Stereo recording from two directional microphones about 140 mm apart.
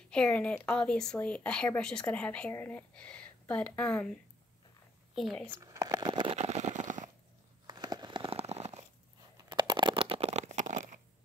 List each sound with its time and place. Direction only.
0.1 s speech: 10° left (ahead or behind)
2.9 s speech: 5° left (ahead or behind)
5.5 s shuffling cards: 25° right (ahead or behind)
6.3 s vehicle: 50° right (ahead or behind)
7.6 s a sound: 30° right (ahead or behind); by 8.8 s 50° right (ahead or behind)
9.4 s a sound: 30° right (ahead or behind); by 11.0 s 65° right (ahead or behind)